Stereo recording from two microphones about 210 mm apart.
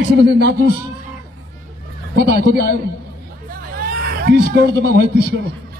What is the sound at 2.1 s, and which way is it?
Speech, 50° right (ahead or behind).